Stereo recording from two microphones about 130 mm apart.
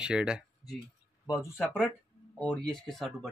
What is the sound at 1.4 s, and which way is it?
Speech, 20° left (ahead or behind).